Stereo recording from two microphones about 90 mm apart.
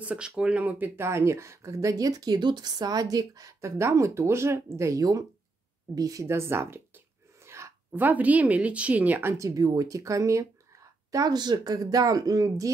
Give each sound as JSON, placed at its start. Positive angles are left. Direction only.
{"t": 0.0, "sound": "speech", "side_deg": -15}
{"t": 6.2, "sound": "speech", "side_deg": -30}
{"t": 7.4, "sound": "a sound", "side_deg": -30}
{"t": 8.0, "sound": "speech", "side_deg": -20}
{"t": 9.3, "sound": "speech", "side_deg": -40}